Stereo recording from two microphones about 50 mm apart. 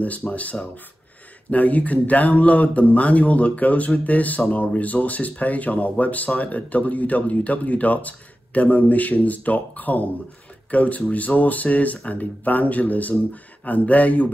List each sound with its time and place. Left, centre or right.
0.3 s speech: left